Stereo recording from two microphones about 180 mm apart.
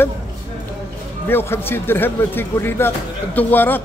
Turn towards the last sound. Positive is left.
turn(degrees=10)  # may be behind; listen again after turning